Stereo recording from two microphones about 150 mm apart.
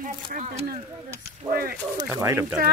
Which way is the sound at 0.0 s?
60° right (ahead or behind).